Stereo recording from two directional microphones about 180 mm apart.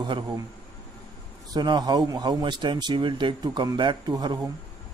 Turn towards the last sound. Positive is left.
turn(degrees=-25)  # may be behind; listen again after turning